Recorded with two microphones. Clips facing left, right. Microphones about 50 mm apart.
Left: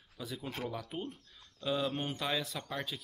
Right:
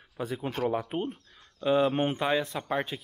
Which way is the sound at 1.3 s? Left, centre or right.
Right.